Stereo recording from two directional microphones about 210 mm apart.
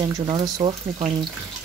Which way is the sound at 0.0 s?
25° right (ahead or behind).